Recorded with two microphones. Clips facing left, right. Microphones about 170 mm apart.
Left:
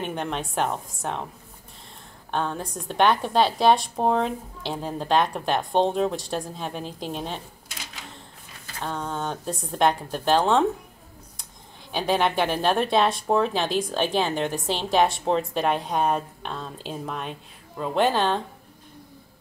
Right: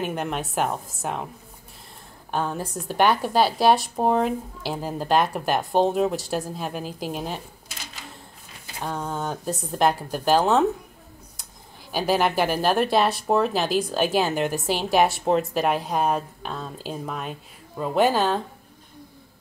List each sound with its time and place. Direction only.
0.0 s speech: 5° right (ahead or behind)
2.3 s speech: 5° right (ahead or behind)
11.9 s speech: 5° right (ahead or behind)